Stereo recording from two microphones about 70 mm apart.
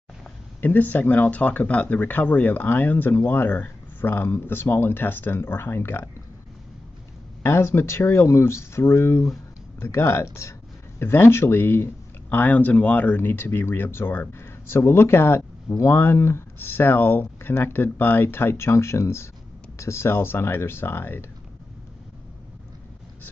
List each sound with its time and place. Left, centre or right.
0.6 s speech: left
7.4 s speech: left